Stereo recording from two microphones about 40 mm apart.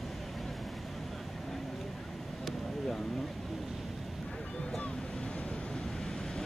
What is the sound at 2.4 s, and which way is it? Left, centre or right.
Vehicle, centre.